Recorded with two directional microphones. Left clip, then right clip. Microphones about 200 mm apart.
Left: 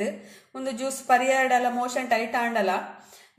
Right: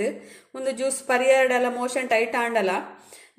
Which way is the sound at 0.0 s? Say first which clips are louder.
Right 3 dB; 35° right (ahead or behind).